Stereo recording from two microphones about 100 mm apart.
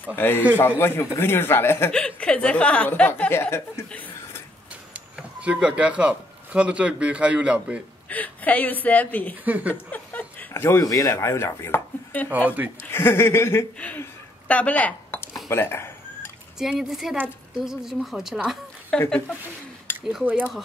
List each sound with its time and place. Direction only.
0.1 s speech: 20° left (ahead or behind)
1.9 s speech: 10° left (ahead or behind); by 3.8 s 25° left (ahead or behind)
4.9 s speech: 15° right (ahead or behind)
8.1 s speech: 15° left (ahead or behind)
9.4 s speech: 15° right (ahead or behind)
9.8 s speech: 15° left (ahead or behind)
12.4 s speech: 15° right (ahead or behind)
12.9 s speech: 25° left (ahead or behind)
13.7 s speech: 15° left (ahead or behind)
15.5 s a sound: 25° left (ahead or behind)
16.5 s speech: 5° right (ahead or behind)
18.9 s speech: 10° left (ahead or behind)